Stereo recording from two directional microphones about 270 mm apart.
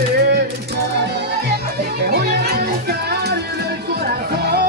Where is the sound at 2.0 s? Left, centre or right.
Right.